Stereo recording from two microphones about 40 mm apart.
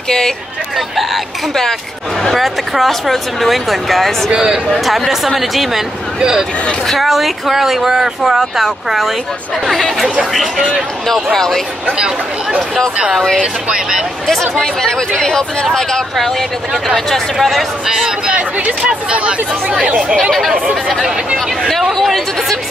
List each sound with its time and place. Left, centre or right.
0.7 s speech: centre
1.5 s speech: centre
4.3 s speech: right
4.6 s speech: centre
6.1 s speech: centre
6.9 s speech: centre
11.3 s speech: centre
13.4 s speech: centre
14.6 s speech: centre
18.9 s speech: right
20.2 s speech: centre
21.9 s speech: centre